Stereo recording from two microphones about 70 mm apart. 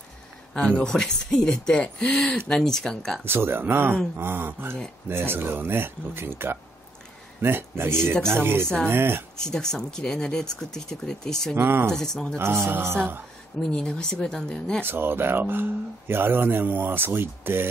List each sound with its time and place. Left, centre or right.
0.6 s speech: centre
3.3 s speech: right
9.4 s speech: centre
11.5 s speech: right
11.9 s speech: centre
12.4 s speech: right
13.7 s speech: centre
14.9 s speech: right